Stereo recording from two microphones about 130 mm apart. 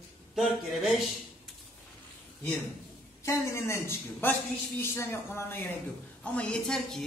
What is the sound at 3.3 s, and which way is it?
A man's voice, 20° left (ahead or behind).